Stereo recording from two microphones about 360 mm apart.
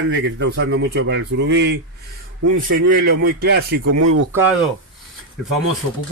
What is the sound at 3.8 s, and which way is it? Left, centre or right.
Speech, right.